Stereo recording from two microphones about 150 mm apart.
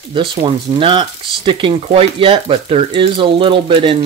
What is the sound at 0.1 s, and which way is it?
Speech, 35° right (ahead or behind).